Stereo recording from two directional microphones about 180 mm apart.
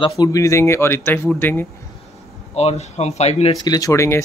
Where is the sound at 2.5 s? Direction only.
35° left (ahead or behind).